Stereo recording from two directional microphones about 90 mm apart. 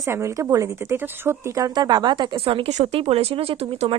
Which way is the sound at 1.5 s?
45° right (ahead or behind).